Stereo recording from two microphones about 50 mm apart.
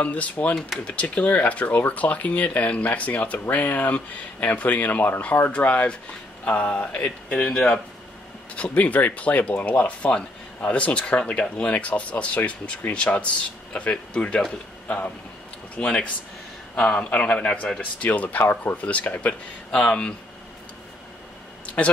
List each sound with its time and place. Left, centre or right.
0.0 s speech: left
7.4 s a man's voice: centre
8.5 s a man's voice: left
17.1 s speech: left
18.5 s speech: left
18.9 s speech: left
19.7 s speech: centre
21.6 s a sound: left